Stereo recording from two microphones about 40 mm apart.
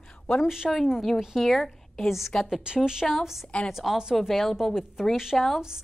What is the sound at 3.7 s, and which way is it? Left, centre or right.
Speech, centre.